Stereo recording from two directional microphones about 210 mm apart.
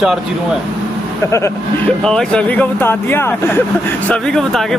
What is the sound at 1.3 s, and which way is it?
Speech, 15° left (ahead or behind).